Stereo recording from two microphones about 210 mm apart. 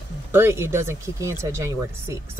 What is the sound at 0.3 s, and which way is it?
Speech, 10° right (ahead or behind).